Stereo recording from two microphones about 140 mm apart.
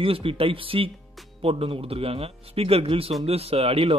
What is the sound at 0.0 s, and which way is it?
A man's voice, 40° right (ahead or behind).